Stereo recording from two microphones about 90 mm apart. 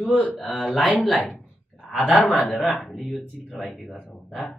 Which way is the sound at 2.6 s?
Centre (ahead or behind).